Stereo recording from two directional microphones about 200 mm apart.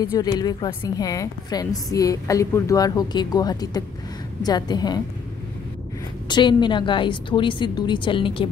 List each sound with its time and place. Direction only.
0.0 s a woman's voice: 20° left (ahead or behind)
6.2 s a woman's voice: 20° left (ahead or behind)